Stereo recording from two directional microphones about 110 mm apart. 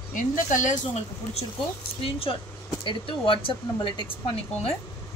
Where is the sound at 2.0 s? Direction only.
55° left (ahead or behind).